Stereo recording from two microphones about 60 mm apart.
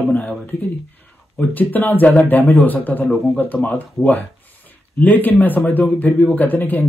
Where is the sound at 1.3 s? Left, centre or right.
Left.